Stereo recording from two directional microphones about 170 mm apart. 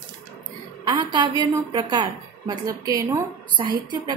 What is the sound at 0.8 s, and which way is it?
A woman's voice, 25° right (ahead or behind).